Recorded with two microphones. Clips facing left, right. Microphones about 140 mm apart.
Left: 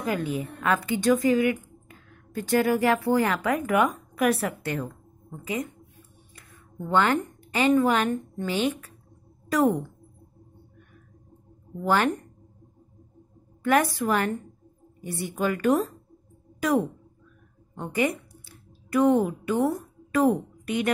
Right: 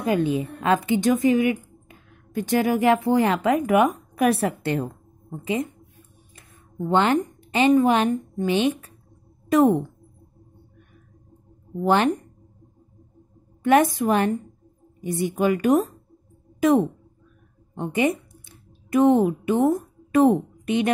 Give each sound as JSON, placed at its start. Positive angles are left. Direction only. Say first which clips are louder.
{"t": 0.0, "sound": "a woman's voice", "louder": "right 6 dB", "side_deg": -25}
{"t": 6.9, "sound": "a woman's voice", "louder": "right 3 dB", "side_deg": -20}
{"t": 11.8, "sound": "a woman's voice", "louder": "right 4 dB", "side_deg": -20}
{"t": 13.6, "sound": "a woman's voice", "louder": "right 5 dB", "side_deg": -20}
{"t": 16.5, "sound": "a sound", "louder": "right 5 dB", "side_deg": -20}